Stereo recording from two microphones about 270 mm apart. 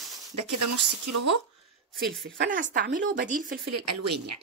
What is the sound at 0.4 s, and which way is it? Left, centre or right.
Speech, right.